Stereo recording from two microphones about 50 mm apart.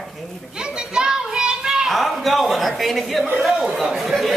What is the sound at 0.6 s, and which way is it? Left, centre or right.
Children playing, centre.